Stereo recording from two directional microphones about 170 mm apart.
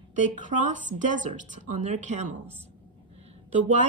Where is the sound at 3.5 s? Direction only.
45° right (ahead or behind).